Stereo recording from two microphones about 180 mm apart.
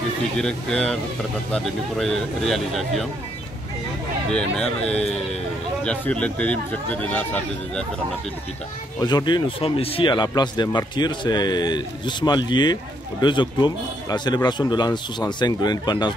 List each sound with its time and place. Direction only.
0.4 s speech: 5° left (ahead or behind)
4.3 s speech: 5° left (ahead or behind)
9.0 s speech: 25° left (ahead or behind)